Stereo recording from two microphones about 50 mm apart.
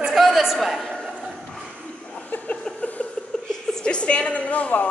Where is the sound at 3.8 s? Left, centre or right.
Left.